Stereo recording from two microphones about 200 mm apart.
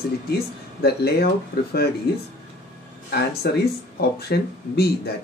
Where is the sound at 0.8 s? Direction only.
50° left (ahead or behind).